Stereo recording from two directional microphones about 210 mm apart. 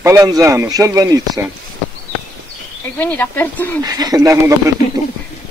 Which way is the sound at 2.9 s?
10° left (ahead or behind).